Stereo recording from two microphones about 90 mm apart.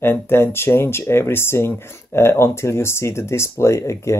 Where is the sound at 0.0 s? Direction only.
25° left (ahead or behind).